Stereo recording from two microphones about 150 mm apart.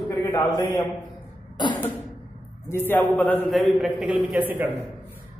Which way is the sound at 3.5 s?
Centre (ahead or behind).